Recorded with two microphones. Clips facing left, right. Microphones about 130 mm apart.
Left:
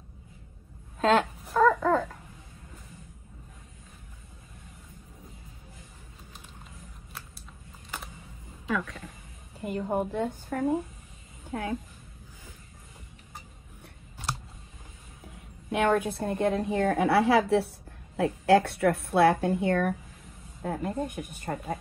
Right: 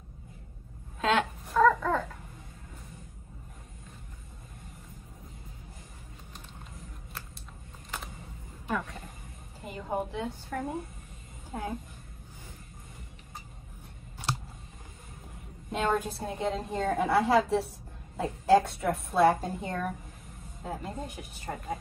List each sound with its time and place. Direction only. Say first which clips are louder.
1.0 s speech: left 5 dB; 40° left (ahead or behind)
1.5 s babbling: left 2 dB; 40° left (ahead or behind)
8.6 s speech: left 2 dB; 90° left
9.7 s speech: left 4 dB; 50° left (ahead or behind)
15.7 s a woman's voice: left 4 dB; 60° left (ahead or behind)
20.6 s speech: left 6 dB; 55° left (ahead or behind)